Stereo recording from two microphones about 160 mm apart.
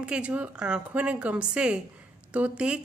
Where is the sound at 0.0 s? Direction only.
5° right (ahead or behind).